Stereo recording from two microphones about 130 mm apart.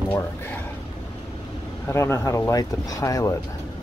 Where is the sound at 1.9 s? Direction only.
20° left (ahead or behind).